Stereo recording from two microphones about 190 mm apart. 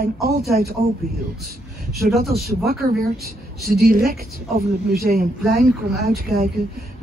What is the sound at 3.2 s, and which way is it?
A woman's voice, 55° right (ahead or behind).